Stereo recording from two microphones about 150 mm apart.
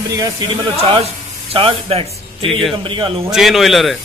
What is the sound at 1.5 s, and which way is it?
Speech, 40° right (ahead or behind).